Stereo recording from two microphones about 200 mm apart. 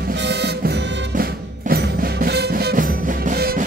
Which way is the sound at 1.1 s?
50° right (ahead or behind).